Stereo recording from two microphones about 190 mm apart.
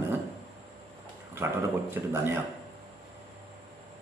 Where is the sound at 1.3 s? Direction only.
10° right (ahead or behind).